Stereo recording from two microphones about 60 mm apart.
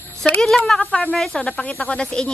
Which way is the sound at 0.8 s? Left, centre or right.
Left.